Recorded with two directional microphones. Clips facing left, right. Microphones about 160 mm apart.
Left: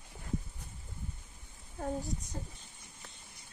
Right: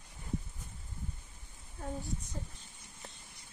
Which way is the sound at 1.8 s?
40° left (ahead or behind).